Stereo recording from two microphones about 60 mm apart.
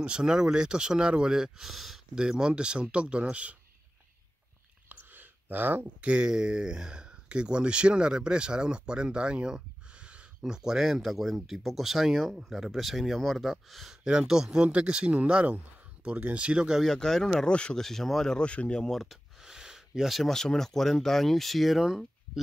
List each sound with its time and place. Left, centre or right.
0.0 s speech: centre
4.8 s whispering: right
5.9 s speech: centre
14.0 s speech: centre
16.8 s speech: centre
19.4 s speech: centre